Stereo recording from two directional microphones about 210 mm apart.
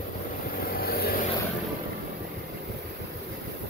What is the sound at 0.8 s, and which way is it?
Vehicle, 45° left (ahead or behind).